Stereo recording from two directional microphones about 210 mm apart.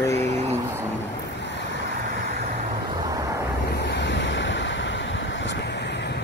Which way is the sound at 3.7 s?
55° left (ahead or behind).